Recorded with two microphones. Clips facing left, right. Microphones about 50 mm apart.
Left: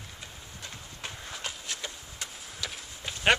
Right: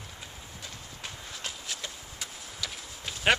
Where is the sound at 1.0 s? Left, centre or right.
Centre.